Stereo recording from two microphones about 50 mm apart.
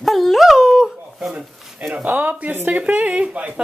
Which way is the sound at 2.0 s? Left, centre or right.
Right.